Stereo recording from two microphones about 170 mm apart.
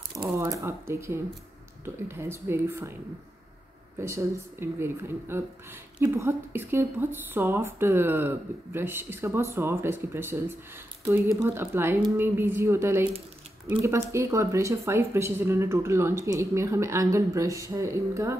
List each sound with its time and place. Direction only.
0.2 s speech: 20° right (ahead or behind)
4.0 s speech: 15° right (ahead or behind)